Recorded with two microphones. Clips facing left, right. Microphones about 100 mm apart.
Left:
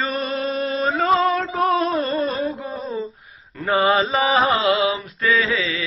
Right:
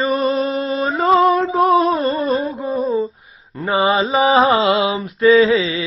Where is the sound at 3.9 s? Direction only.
15° right (ahead or behind).